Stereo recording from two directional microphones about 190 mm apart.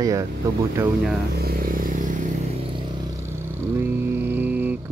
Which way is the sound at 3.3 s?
15° right (ahead or behind).